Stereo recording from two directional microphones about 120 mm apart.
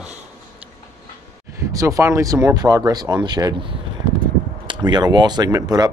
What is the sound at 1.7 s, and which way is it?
Speech, 25° right (ahead or behind).